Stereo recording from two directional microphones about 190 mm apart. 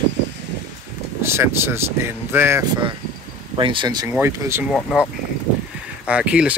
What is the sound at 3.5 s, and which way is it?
Speech, 25° right (ahead or behind).